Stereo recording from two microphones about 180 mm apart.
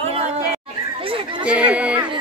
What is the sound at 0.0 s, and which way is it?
Chatter, 35° right (ahead or behind).